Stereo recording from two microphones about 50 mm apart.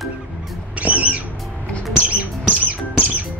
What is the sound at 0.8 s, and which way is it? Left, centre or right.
Music, right.